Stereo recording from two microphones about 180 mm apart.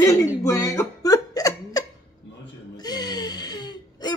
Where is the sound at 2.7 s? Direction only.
20° left (ahead or behind).